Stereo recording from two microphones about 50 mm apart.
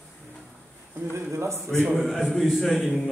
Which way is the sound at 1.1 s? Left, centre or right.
Right.